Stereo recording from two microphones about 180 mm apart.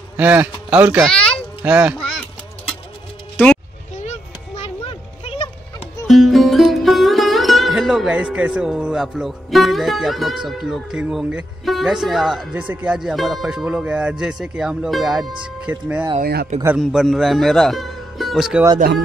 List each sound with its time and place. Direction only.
0.2 s speech: 10° right (ahead or behind)
1.0 s a child's voice: 5° left (ahead or behind)
1.6 s speech: 10° right (ahead or behind)
2.0 s honk: 5° left (ahead or behind)
4.0 s a sound: 35° left (ahead or behind)
6.0 s sitar: centre (ahead or behind)
16.2 s speech: 60° right (ahead or behind)
16.8 s speech: centre (ahead or behind)